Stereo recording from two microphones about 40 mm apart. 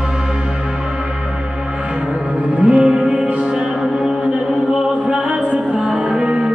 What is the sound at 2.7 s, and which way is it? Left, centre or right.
Music, right.